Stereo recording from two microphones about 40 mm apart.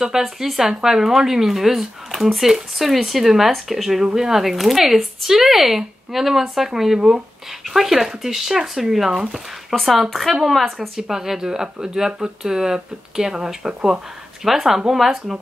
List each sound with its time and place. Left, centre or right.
0.4 s speech: centre
11.0 s speech: centre